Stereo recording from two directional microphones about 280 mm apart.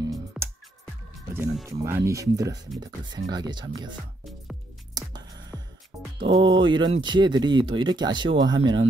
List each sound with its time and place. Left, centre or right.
1.3 s speech: centre
5.5 s music: centre
6.2 s speech: centre